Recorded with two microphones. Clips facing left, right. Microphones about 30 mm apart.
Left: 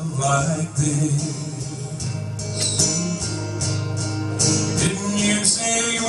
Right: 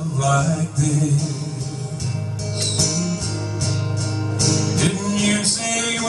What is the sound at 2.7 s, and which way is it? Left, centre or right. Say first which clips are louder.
Music: right 1 dB; centre.